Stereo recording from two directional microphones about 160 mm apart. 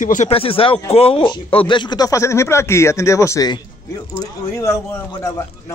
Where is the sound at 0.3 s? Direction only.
35° left (ahead or behind).